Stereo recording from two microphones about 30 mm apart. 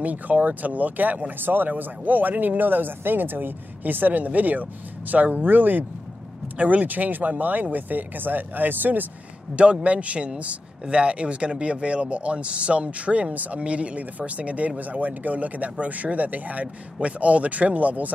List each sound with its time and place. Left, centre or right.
0.0 s speech: right
6.6 s speech: right
9.8 s speech: right
13.3 s speech: right
13.6 s speech: right
14.8 s speech: right